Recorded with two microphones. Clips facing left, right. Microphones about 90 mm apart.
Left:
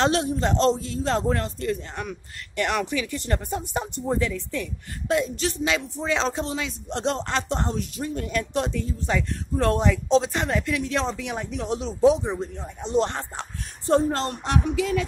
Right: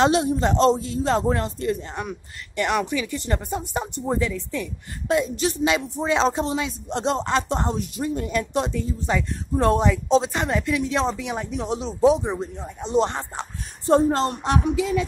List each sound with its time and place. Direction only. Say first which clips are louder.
0.0 s speech: right 3 dB; 10° right (ahead or behind)
2.5 s speech: right 2 dB; 5° right (ahead or behind)
13.8 s speech: right 3 dB; 15° right (ahead or behind)